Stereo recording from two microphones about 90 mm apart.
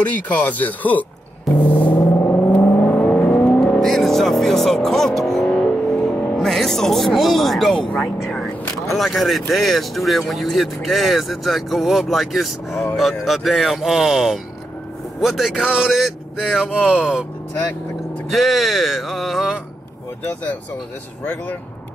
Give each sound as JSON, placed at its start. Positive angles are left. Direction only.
{"t": 0.1, "sound": "speech", "side_deg": 15}
{"t": 2.3, "sound": "vehicle", "side_deg": 20}
{"t": 3.8, "sound": "vehicle", "side_deg": 5}
{"t": 7.9, "sound": "speech", "side_deg": 5}
{"t": 16.9, "sound": "speech", "side_deg": -10}
{"t": 18.3, "sound": "a sound", "side_deg": 0}
{"t": 21.2, "sound": "speech", "side_deg": 20}